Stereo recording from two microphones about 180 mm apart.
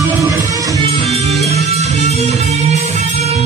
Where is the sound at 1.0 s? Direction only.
35° right (ahead or behind).